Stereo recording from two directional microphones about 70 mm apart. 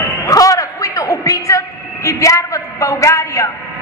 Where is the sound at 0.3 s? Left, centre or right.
Left.